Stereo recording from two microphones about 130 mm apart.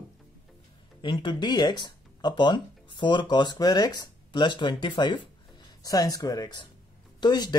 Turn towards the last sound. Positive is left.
turn(degrees=35)  # may be behind; listen again after turning